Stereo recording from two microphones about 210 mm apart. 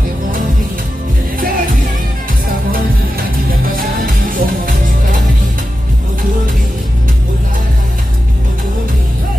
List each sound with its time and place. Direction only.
3.6 s music: 40° right (ahead or behind)